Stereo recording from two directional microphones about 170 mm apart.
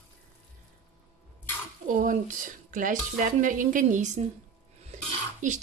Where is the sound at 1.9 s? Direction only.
50° right (ahead or behind).